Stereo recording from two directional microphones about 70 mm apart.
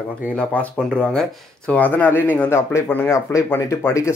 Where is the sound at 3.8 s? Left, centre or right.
Left.